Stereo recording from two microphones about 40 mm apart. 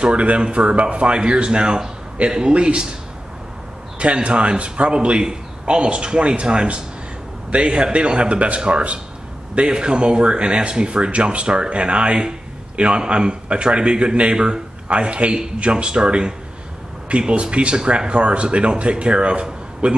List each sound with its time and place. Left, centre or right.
0.0 s speech: right
4.0 s speech: right